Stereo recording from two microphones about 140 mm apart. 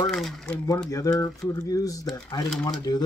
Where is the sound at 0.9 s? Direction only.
25° left (ahead or behind).